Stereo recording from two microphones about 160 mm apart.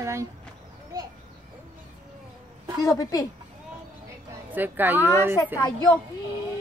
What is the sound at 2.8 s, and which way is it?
Speech, 20° left (ahead or behind).